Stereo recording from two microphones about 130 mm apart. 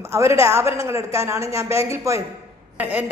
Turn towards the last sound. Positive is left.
turn(degrees=-10)  # may be behind; listen again after turning